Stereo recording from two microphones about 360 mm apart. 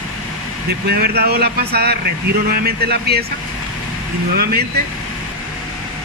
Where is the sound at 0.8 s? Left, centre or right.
Right.